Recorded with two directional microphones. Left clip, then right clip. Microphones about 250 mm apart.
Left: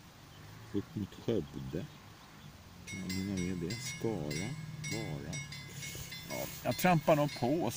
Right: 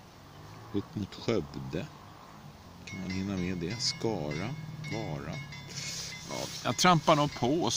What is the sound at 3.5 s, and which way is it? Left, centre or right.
Speech, centre.